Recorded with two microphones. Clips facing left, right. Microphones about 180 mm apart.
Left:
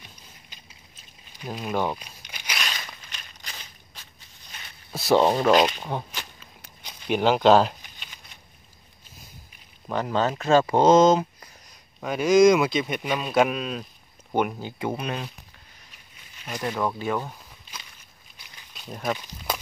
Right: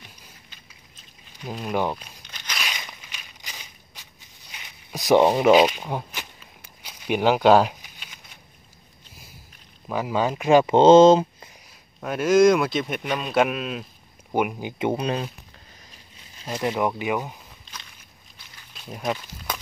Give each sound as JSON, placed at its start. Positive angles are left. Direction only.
{"t": 1.4, "sound": "a man's voice", "side_deg": 5}
{"t": 1.9, "sound": "crumpling", "side_deg": 10}
{"t": 2.6, "sound": "walk", "side_deg": -15}
{"t": 6.8, "sound": "a sound", "side_deg": -5}
{"t": 9.8, "sound": "speech", "side_deg": -5}
{"t": 12.0, "sound": "a man's voice", "side_deg": 0}
{"t": 14.8, "sound": "speech", "side_deg": -30}
{"t": 16.3, "sound": "speech", "side_deg": -30}
{"t": 18.7, "sound": "a sound", "side_deg": 0}